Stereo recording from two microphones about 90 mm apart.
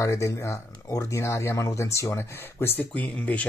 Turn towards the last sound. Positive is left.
turn(degrees=15)  # may be behind; listen again after turning